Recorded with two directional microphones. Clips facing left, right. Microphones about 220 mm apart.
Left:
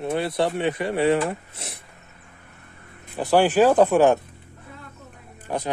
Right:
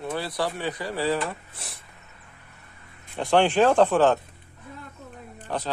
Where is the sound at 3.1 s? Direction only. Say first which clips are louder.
Left 2 dB; 5° left (ahead or behind).